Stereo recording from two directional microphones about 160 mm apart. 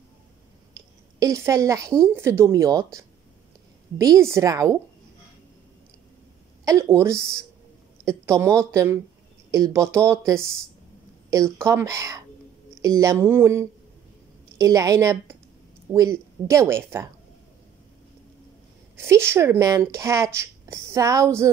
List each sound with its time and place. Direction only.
0.7 s a sound: 20° right (ahead or behind)
2.0 s speech: 15° right (ahead or behind)
6.6 s a woman's voice: 20° right (ahead or behind)
18.9 s a woman's voice: 15° right (ahead or behind)